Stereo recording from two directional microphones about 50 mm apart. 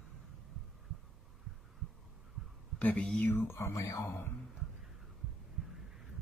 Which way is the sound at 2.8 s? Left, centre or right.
Left.